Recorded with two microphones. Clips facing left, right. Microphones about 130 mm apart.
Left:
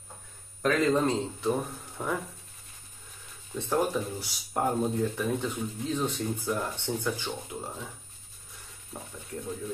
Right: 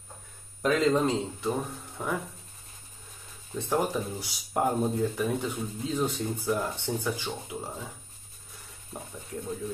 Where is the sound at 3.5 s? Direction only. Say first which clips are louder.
Even; 15° right (ahead or behind).